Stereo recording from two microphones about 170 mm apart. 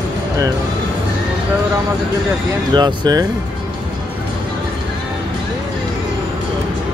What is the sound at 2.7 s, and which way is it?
Speech, 25° right (ahead or behind).